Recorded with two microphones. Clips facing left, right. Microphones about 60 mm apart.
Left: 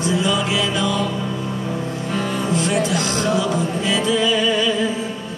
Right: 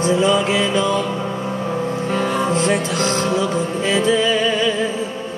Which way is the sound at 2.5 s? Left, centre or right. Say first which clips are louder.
Right 1 dB; right.